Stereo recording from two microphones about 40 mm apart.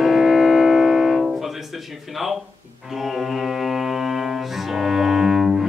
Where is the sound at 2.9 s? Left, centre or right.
Centre.